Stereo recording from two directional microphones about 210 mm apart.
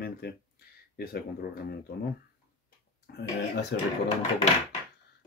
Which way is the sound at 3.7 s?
55° left (ahead or behind).